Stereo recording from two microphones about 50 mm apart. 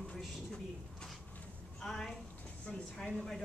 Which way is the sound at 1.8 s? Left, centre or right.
Centre.